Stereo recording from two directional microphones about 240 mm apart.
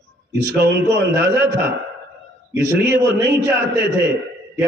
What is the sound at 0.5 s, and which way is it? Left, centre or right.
Speech, right.